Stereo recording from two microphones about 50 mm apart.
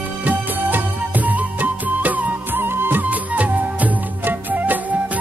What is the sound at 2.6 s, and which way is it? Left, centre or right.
Music, right.